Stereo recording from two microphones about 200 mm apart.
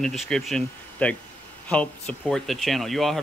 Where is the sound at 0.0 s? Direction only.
Centre (ahead or behind).